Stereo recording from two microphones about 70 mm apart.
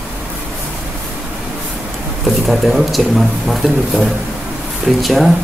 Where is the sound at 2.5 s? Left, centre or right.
Centre.